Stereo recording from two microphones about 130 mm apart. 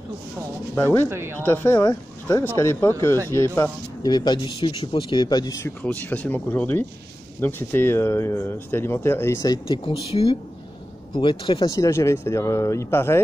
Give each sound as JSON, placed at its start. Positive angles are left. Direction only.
{"t": 0.7, "sound": "speech", "side_deg": 15}
{"t": 1.0, "sound": "speech", "side_deg": -20}
{"t": 1.4, "sound": "speech", "side_deg": 20}
{"t": 4.0, "sound": "speech", "side_deg": 35}
{"t": 5.6, "sound": "speech", "side_deg": 10}
{"t": 9.7, "sound": "speech", "side_deg": 45}
{"t": 11.7, "sound": "speech", "side_deg": 25}